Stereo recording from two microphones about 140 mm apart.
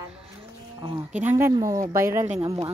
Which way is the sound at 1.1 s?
15° right (ahead or behind).